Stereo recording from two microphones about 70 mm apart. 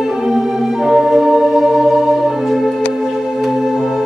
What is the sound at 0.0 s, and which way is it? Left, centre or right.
Organ, centre.